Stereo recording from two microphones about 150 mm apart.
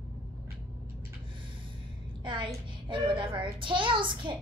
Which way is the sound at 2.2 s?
35° right (ahead or behind).